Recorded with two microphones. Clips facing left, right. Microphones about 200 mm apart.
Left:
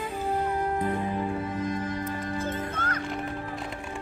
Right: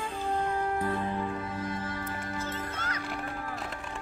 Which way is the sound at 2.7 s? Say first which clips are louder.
Left 5 dB; 55° left (ahead or behind).